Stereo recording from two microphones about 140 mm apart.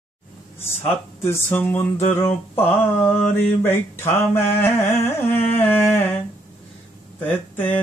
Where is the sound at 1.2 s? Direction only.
15° left (ahead or behind).